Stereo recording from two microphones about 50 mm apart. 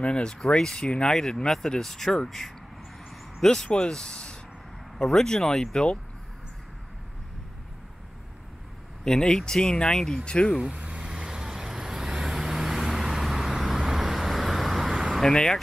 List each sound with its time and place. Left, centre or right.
0.0 s speech: centre
3.6 s speech: left
9.0 s speech: centre
10.7 s vehicle: right; by 15.1 s centre
15.2 s speech: centre